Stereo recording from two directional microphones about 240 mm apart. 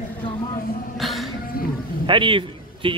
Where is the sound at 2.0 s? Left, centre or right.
Right.